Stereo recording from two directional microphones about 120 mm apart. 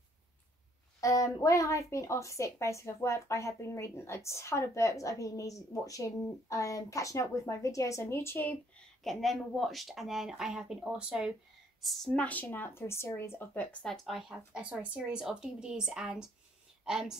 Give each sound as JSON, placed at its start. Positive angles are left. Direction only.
{"t": 1.0, "sound": "a woman's voice", "side_deg": 30}
{"t": 9.0, "sound": "speech", "side_deg": 0}
{"t": 11.8, "sound": "speech", "side_deg": 5}
{"t": 13.8, "sound": "speech", "side_deg": 0}